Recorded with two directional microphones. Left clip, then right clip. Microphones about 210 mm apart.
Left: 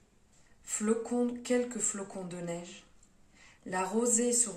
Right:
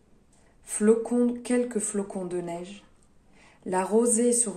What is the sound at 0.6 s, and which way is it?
Speech, 50° right (ahead or behind).